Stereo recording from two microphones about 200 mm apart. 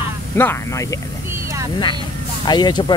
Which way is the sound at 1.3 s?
15° right (ahead or behind).